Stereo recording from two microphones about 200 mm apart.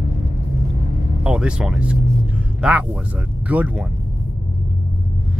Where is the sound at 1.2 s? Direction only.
5° right (ahead or behind).